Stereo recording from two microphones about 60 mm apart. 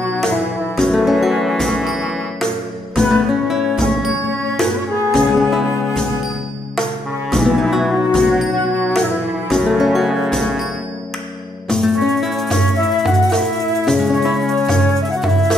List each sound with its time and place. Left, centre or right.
0.7 s music: centre
1.0 s music: centre
3.0 s music: centre
5.3 s music: centre
7.2 s music: centre
7.7 s music: centre
9.7 s music: centre
11.7 s music: centre